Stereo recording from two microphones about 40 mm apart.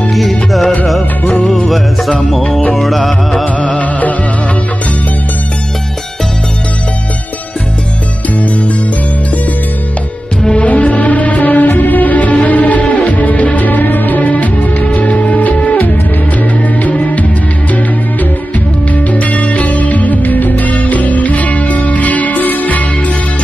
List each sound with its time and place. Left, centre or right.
0.1 s music: centre
2.7 s music: centre
3.5 s music: left
10.6 s music: left
19.1 s music: left